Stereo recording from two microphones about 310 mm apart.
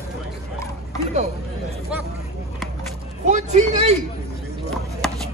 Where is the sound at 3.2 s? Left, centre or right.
Right.